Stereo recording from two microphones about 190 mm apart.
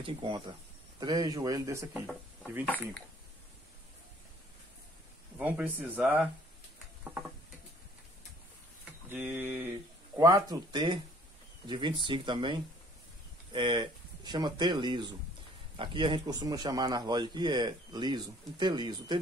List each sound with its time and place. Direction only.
0.0 s a man's voice: 25° right (ahead or behind)
2.6 s speech: 10° left (ahead or behind)
5.4 s speech: 10° right (ahead or behind)
9.1 s a man's voice: 10° right (ahead or behind)